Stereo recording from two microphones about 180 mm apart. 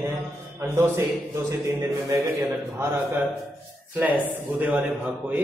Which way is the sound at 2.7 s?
10° right (ahead or behind).